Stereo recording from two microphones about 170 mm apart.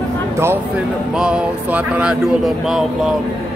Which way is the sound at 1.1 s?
5° right (ahead or behind).